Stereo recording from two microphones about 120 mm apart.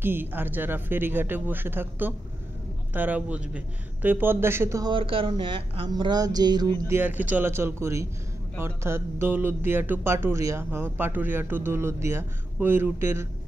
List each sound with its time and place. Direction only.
0.0 s speech: 15° right (ahead or behind)
4.9 s speech: 45° right (ahead or behind)
6.9 s speech: 15° right (ahead or behind)